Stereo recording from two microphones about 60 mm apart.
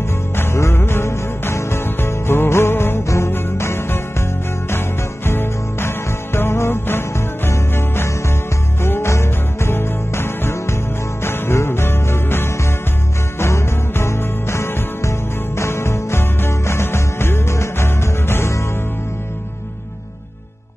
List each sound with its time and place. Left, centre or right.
0.4 s music: left